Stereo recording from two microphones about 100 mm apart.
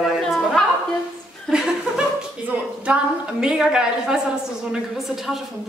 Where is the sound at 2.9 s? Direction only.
10° right (ahead or behind).